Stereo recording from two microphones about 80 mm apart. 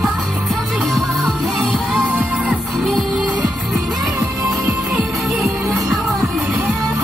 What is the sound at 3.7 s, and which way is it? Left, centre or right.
Music, centre.